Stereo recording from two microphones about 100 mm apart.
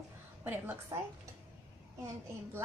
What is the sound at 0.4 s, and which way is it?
Speech, 20° right (ahead or behind).